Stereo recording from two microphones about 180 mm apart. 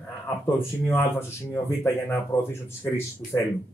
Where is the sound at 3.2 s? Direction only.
50° left (ahead or behind).